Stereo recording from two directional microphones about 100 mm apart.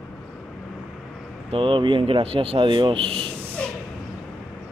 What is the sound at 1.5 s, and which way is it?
Speech, 60° right (ahead or behind).